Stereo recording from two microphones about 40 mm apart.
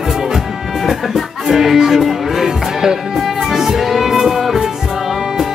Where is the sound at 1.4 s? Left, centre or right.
Centre.